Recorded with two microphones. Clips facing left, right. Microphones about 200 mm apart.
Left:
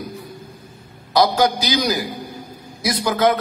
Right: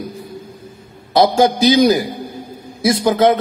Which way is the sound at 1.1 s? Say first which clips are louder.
Right 4 dB; 25° right (ahead or behind).